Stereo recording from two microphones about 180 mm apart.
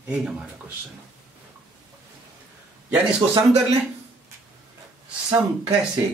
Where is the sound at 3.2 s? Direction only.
25° right (ahead or behind).